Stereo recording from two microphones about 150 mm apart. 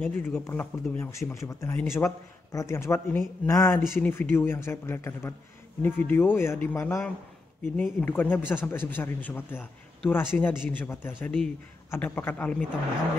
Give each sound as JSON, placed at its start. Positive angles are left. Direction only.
{"t": 0.0, "sound": "a man's voice", "side_deg": 15}